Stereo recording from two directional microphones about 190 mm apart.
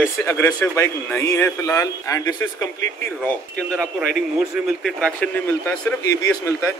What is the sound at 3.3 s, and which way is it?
Speech, 5° left (ahead or behind).